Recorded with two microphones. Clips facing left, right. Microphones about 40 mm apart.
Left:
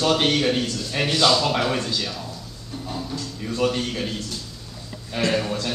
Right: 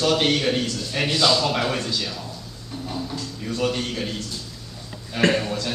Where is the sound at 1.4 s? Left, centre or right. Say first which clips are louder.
Left 1 dB; centre.